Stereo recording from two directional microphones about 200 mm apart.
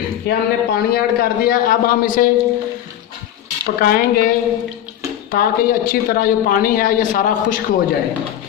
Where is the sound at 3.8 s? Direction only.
45° left (ahead or behind).